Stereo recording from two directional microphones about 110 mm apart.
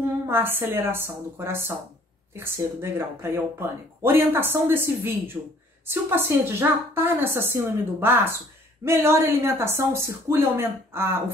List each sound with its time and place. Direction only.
0.3 s speech: 20° right (ahead or behind)